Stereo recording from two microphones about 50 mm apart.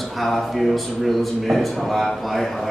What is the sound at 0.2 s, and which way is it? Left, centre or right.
A man's voice, centre.